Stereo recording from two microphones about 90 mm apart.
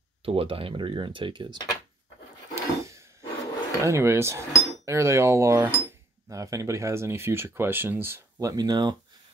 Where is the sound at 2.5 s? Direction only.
35° right (ahead or behind).